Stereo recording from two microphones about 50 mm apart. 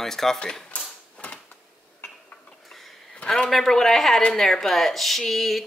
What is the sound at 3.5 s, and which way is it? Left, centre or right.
Speech, centre.